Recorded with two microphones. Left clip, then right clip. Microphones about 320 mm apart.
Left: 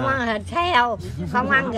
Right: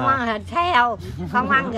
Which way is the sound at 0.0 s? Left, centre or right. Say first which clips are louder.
Right 2 dB; centre.